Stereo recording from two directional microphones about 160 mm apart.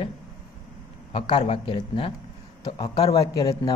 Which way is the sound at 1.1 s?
30° left (ahead or behind).